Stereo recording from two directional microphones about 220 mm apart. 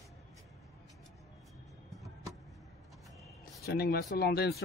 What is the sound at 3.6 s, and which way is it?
Speech, 45° left (ahead or behind).